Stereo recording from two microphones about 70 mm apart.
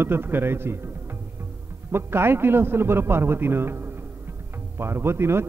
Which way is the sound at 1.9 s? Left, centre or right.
Right.